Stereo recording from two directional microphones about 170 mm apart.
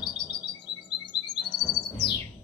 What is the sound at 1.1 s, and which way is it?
Music, 25° left (ahead or behind).